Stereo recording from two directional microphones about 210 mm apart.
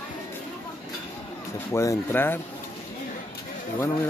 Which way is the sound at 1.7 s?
15° left (ahead or behind).